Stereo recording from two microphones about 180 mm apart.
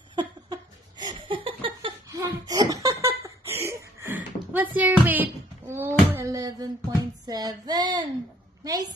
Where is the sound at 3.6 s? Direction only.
10° right (ahead or behind).